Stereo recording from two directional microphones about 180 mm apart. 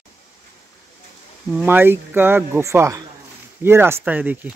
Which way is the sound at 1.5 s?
10° right (ahead or behind).